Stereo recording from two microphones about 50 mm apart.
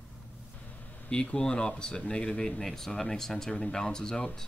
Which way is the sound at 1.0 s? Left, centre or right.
Left.